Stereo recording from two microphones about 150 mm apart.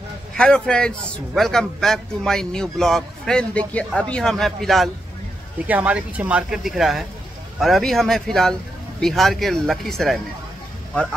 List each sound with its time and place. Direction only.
0.4 s a man's voice: 5° left (ahead or behind)
5.7 s a man's voice: 10° right (ahead or behind)